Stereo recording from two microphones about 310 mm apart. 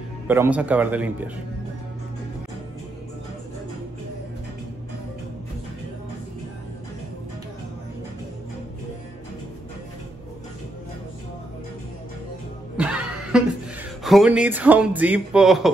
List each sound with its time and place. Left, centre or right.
0.3 s speech: centre
12.7 s music: centre
14.0 s speech: centre